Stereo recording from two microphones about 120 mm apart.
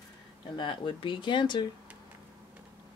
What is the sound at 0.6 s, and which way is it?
Speech, 45° left (ahead or behind).